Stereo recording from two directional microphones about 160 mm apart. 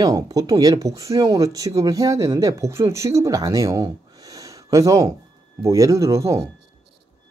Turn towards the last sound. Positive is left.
turn(degrees=-20)  # may be behind; listen again after turning